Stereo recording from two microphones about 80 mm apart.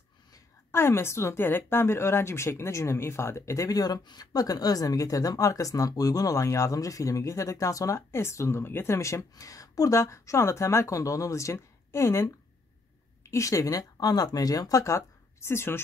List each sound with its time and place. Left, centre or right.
0.7 s speech: left